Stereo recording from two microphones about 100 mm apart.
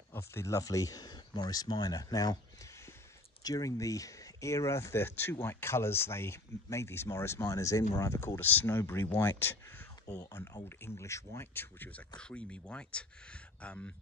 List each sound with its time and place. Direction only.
0.1 s speech: 25° left (ahead or behind)
10.0 s speech: 35° left (ahead or behind); by 13.9 s 10° left (ahead or behind)